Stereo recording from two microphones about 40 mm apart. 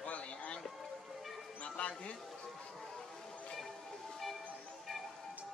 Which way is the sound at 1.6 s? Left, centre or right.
Left.